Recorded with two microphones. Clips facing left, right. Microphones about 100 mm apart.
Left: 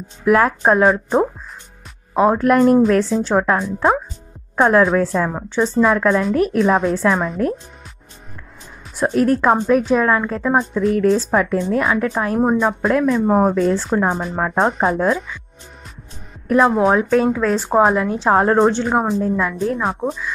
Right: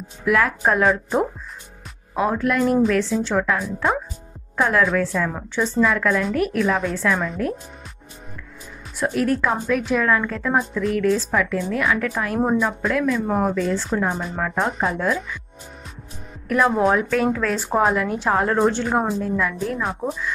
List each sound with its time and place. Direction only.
0.2 s a woman's voice: 35° left (ahead or behind)
2.4 s a woman's voice: 45° left (ahead or behind)
8.9 s a woman's voice: 35° left (ahead or behind)
16.4 s a woman's voice: 25° left (ahead or behind)
18.7 s a woman's voice: 20° left (ahead or behind)